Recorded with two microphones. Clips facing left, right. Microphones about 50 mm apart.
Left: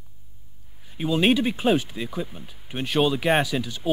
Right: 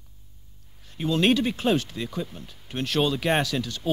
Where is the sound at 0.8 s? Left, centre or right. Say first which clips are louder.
Left 1 dB; centre.